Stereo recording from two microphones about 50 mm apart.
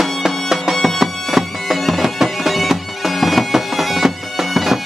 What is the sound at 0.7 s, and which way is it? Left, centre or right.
Music, centre.